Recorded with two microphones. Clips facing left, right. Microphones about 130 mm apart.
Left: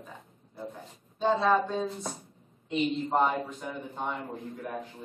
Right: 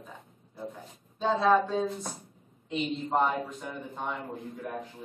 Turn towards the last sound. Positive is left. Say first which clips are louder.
# even
turn(degrees=0)  # may be behind; listen again after turning